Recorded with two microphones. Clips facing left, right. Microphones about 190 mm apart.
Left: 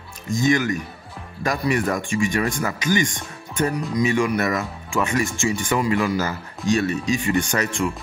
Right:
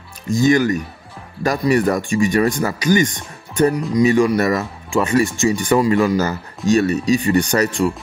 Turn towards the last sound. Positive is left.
turn(degrees=-40)  # may be behind; listen again after turning